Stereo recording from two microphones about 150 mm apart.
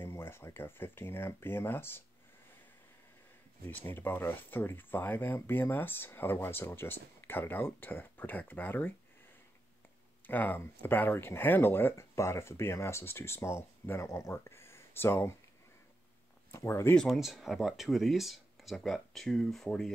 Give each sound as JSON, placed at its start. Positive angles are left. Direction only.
{"t": 0.0, "sound": "speech", "side_deg": 15}
{"t": 3.6, "sound": "speech", "side_deg": 15}
{"t": 10.2, "sound": "speech", "side_deg": 10}
{"t": 16.5, "sound": "speech", "side_deg": 20}
{"t": 16.9, "sound": "speech", "side_deg": 0}